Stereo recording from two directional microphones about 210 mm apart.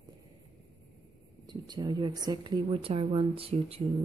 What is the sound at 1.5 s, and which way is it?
Speech, 20° right (ahead or behind).